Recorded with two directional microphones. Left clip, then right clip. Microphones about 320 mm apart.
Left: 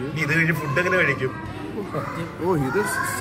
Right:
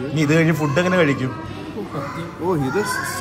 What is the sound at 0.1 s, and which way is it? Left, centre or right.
A man's voice, centre.